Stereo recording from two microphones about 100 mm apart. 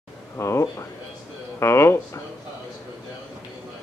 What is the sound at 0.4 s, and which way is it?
Speech, 30° left (ahead or behind).